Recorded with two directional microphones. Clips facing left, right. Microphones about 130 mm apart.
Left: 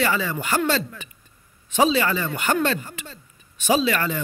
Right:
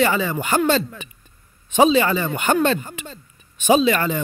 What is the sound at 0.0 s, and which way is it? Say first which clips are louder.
A man's voice: right 4 dB; 20° right (ahead or behind).